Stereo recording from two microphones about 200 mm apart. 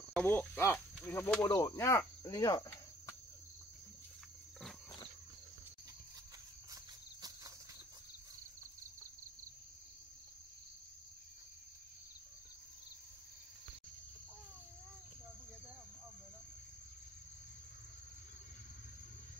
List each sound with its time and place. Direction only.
0.1 s cricket: 10° left (ahead or behind)
1.0 s insect: 10° left (ahead or behind)
6.7 s cricket: 15° right (ahead or behind)